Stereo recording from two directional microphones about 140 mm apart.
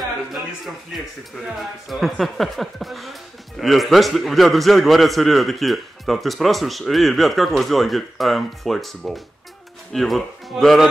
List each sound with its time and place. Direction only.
0.9 s a man's voice: centre (ahead or behind)